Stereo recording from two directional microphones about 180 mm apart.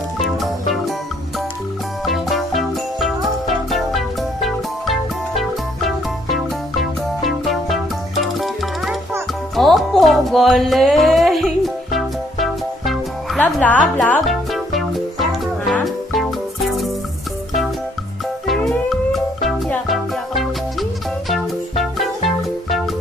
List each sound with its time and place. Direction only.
0.2 s music: centre (ahead or behind)
2.0 s music: centre (ahead or behind)
18.5 s music: centre (ahead or behind)